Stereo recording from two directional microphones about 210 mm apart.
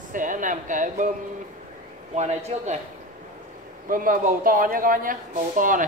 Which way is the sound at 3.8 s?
40° right (ahead or behind).